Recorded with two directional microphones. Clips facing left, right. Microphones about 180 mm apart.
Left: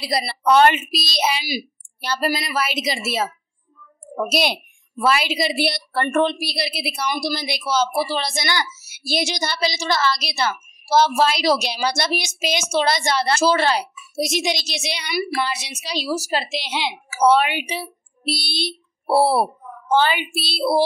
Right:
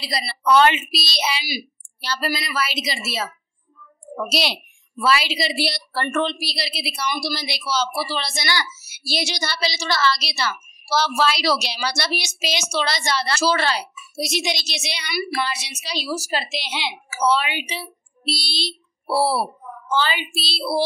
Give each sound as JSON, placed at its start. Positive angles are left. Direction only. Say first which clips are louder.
{"t": 0.0, "sound": "a woman's voice", "louder": "left 4 dB", "side_deg": 55}
{"t": 20.3, "sound": "child singing", "louder": "left 3 dB", "side_deg": 55}